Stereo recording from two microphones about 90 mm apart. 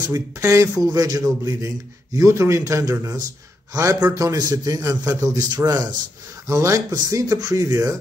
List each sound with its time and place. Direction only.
0.1 s a man's voice: 35° right (ahead or behind)
6.4 s speech: 35° right (ahead or behind)